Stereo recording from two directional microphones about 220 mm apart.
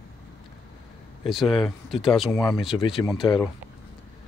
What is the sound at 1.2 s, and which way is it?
Speech, centre (ahead or behind).